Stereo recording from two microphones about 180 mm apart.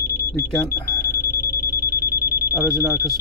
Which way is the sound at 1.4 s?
15° right (ahead or behind).